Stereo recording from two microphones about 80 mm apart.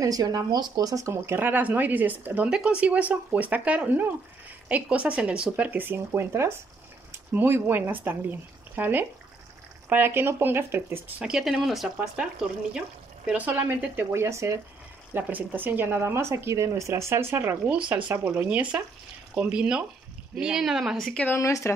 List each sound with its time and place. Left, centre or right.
0.0 s speech: right
1.1 s speech: right
11.1 s speech: centre
13.3 s speech: centre
14.1 s speech: right
15.1 s speech: right
17.6 s speech: centre
21.4 s speech: left